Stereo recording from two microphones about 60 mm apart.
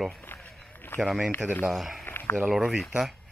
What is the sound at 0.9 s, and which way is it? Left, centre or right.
Speech, left.